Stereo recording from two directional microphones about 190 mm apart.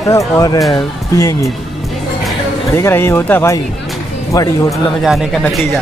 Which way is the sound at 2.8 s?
10° left (ahead or behind).